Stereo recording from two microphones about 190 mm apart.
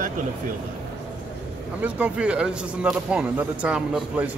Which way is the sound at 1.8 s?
5° right (ahead or behind).